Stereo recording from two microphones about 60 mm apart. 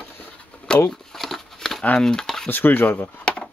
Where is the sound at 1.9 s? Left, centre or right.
Centre.